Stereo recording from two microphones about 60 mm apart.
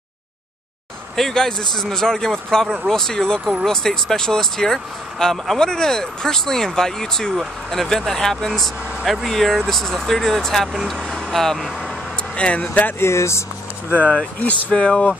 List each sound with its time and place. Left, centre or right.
1.1 s speech: centre
12.4 s speech: left
13.0 s speech: left
13.9 s speech: left